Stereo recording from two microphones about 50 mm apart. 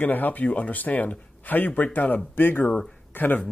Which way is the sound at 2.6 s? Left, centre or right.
Centre.